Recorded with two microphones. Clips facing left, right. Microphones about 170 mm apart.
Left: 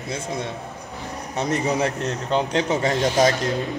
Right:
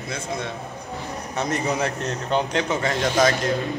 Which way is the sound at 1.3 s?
30° left (ahead or behind).